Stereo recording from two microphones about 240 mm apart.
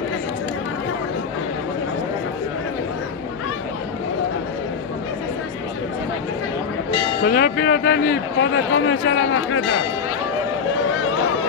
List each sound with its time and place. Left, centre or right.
7.2 s a man's voice: left